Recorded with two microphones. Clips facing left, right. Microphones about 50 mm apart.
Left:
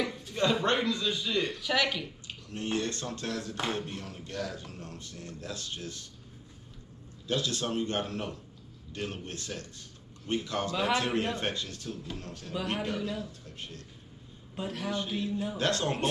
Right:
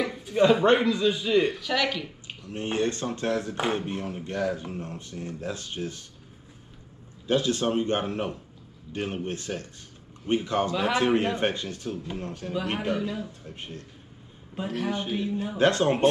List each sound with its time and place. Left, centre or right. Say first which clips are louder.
0.0 s speech: right 7 dB; centre
1.6 s speech: right 2 dB; centre
2.2 s speech: right 5 dB; right
7.2 s speech: right 7 dB; right
14.5 s speech: right 5 dB; centre
14.9 s speech: right 2 dB; right